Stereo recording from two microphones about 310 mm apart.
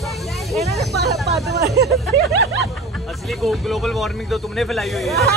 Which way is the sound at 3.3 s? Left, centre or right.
Centre.